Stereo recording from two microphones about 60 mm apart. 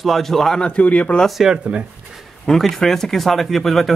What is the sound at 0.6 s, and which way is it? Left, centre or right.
Speech, left.